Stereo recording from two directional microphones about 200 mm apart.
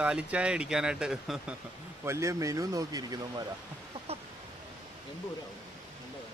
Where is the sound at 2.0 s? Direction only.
15° right (ahead or behind).